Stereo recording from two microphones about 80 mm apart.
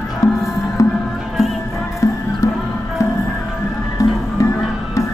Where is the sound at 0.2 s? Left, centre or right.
Left.